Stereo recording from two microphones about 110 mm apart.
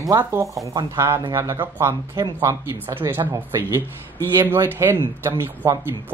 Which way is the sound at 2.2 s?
35° right (ahead or behind).